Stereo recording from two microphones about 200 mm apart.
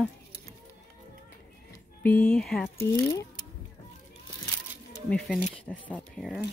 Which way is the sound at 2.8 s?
15° left (ahead or behind).